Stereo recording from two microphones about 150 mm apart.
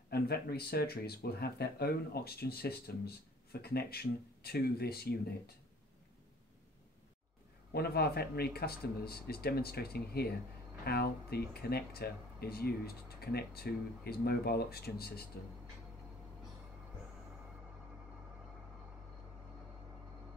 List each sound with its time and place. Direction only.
0.1 s speech: 90° left
7.7 s speech: 90° left